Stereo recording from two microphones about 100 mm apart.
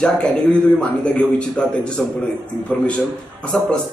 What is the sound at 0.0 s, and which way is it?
A man's voice, 10° left (ahead or behind).